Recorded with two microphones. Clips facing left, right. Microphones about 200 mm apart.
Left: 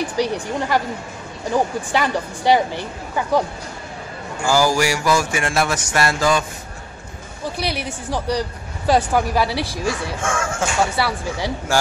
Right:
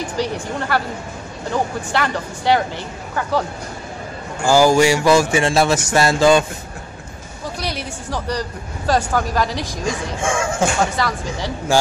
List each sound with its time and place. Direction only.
0.2 s speech: 15° left (ahead or behind)
4.5 s speech: 20° right (ahead or behind)
7.5 s speech: 10° left (ahead or behind)
9.7 s speech: 15° right (ahead or behind)
11.0 s speech: 10° left (ahead or behind)